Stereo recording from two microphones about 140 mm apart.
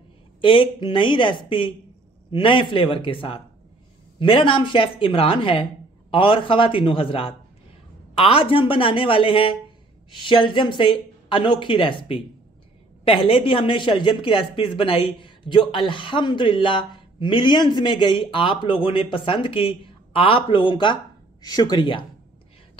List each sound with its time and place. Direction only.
0.4 s speech: 35° left (ahead or behind)